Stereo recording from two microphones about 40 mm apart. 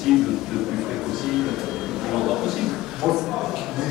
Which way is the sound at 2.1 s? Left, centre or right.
Centre.